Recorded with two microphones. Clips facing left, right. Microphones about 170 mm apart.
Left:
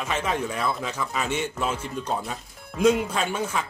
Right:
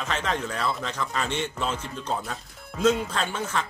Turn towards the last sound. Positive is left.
turn(degrees=10)  # may be behind; listen again after turning